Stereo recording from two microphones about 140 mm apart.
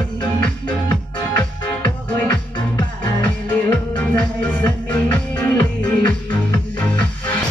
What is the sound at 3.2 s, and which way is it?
Music, 10° left (ahead or behind).